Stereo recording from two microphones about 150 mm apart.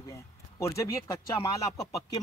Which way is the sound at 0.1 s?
20° left (ahead or behind).